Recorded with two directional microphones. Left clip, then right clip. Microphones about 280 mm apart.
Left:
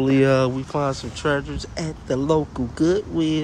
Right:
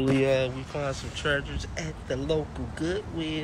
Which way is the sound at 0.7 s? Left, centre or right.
Left.